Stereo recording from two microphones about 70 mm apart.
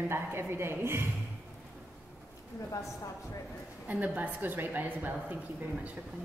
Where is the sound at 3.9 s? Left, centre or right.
Right.